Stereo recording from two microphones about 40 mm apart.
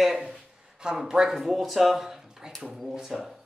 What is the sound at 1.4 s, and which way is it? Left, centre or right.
Music, centre.